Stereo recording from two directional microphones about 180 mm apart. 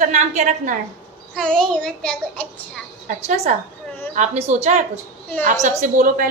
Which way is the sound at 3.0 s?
40° right (ahead or behind).